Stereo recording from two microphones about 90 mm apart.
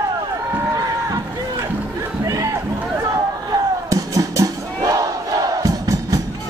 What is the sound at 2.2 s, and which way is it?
Music, 40° right (ahead or behind).